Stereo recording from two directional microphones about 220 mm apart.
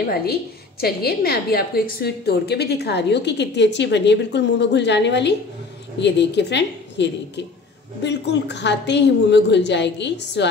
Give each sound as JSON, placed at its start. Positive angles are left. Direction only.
{"t": 0.0, "sound": "a woman's voice", "side_deg": 45}